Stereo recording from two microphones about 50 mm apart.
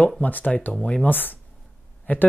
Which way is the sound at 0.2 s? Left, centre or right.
Left.